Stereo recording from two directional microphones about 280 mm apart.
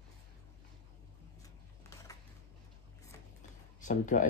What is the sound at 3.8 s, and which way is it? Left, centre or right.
Speech, left.